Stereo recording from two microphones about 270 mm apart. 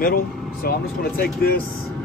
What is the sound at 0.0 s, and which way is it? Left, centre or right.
Speech, left.